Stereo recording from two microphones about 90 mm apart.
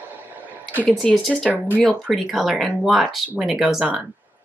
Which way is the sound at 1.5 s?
20° right (ahead or behind).